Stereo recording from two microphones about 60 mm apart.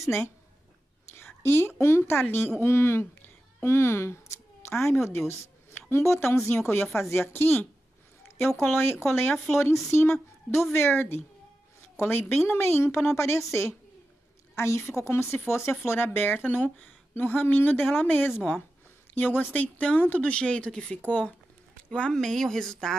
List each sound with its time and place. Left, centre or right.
1.1 s whispering: left
1.8 s a woman's voice: left
16.4 s a woman's voice: left
21.1 s speech: left
21.9 s speech: centre